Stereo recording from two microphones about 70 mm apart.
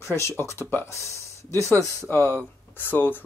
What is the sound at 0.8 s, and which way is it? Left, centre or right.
Speech, left.